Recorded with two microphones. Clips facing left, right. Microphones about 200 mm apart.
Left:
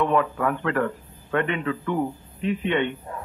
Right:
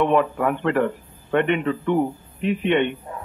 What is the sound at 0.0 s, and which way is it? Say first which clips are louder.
A man's voice: right 3 dB; 20° right (ahead or behind).